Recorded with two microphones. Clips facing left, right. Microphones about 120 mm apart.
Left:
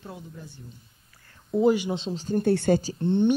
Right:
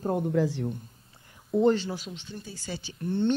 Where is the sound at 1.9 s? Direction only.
25° left (ahead or behind).